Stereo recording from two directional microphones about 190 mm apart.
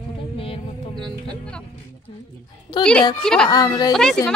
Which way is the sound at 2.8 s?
25° left (ahead or behind).